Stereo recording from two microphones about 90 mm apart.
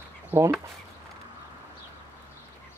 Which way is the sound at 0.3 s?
25° right (ahead or behind).